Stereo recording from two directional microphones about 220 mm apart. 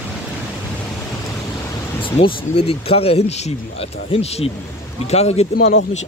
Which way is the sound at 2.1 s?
25° left (ahead or behind).